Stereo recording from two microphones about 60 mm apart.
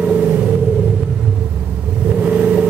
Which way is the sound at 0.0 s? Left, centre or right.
Centre.